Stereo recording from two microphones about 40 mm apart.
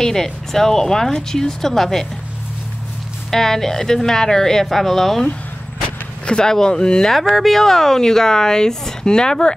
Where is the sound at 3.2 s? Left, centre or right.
Centre.